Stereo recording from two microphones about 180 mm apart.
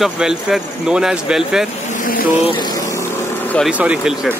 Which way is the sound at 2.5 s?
25° left (ahead or behind).